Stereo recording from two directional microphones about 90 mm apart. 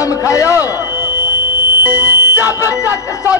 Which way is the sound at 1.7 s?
25° right (ahead or behind).